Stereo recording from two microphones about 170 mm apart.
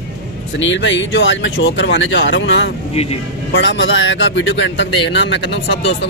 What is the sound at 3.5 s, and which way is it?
A man's voice, 90° left.